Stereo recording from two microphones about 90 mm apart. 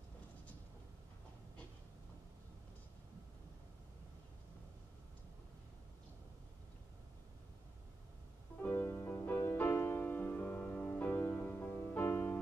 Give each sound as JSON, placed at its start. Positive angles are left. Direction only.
{"t": 8.6, "sound": "music", "side_deg": 20}